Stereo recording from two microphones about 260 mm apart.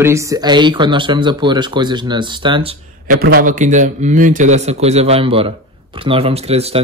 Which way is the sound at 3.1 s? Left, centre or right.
Right.